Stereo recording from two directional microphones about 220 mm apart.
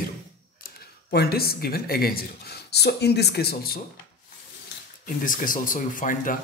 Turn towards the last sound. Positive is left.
turn(degrees=35)  # may be behind; listen again after turning